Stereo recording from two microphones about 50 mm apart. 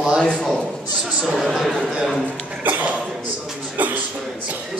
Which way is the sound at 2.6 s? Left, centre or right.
Right.